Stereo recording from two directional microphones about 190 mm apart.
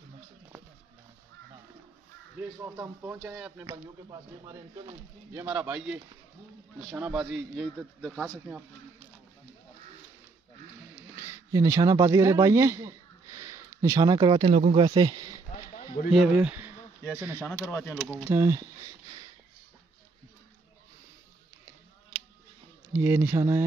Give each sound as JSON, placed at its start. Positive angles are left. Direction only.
{"t": 2.6, "sound": "a man's voice", "side_deg": -15}
{"t": 8.5, "sound": "speech", "side_deg": -10}
{"t": 11.1, "sound": "a man's voice", "side_deg": -15}
{"t": 15.5, "sound": "a sound", "side_deg": 40}
{"t": 16.1, "sound": "speech", "side_deg": -5}
{"t": 17.5, "sound": "speech", "side_deg": 10}
{"t": 18.1, "sound": "speech", "side_deg": -15}
{"t": 22.9, "sound": "speech", "side_deg": -10}